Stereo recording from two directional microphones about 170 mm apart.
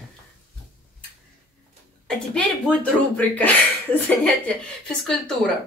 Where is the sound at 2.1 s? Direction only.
5° left (ahead or behind).